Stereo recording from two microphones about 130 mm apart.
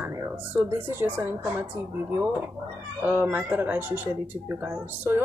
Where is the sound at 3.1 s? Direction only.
15° right (ahead or behind).